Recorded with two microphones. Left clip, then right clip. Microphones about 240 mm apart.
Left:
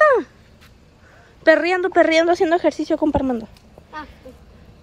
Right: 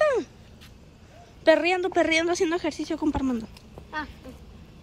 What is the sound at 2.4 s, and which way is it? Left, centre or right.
Speech, centre.